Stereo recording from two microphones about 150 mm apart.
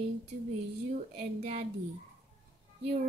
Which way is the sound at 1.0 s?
50° right (ahead or behind).